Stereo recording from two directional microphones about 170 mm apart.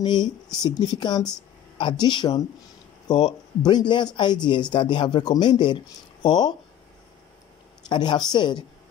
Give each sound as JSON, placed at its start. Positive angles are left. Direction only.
{"t": 0.0, "sound": "speech", "side_deg": 25}
{"t": 7.9, "sound": "speech", "side_deg": 25}